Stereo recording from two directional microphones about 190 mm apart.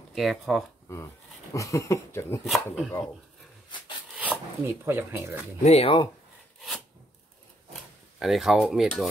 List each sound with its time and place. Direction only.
0.1 s speech: centre (ahead or behind)
1.5 s speech: 15° left (ahead or behind)
2.4 s speech: centre (ahead or behind)
4.1 s speech: 10° right (ahead or behind)
5.6 s speech: 35° left (ahead or behind)
8.2 s speech: centre (ahead or behind)